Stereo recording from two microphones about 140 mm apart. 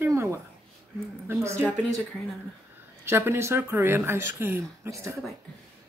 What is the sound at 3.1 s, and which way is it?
Speech, 15° right (ahead or behind).